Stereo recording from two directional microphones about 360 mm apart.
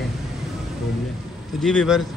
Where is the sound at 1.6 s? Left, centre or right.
Centre.